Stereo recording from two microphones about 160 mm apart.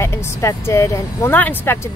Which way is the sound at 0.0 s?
15° left (ahead or behind).